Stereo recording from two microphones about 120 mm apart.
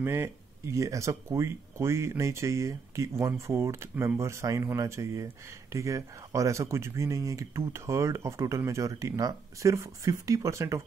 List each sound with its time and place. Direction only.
0.0 s speech: 20° right (ahead or behind)